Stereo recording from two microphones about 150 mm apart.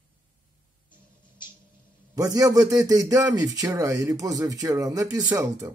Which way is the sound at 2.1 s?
25° right (ahead or behind).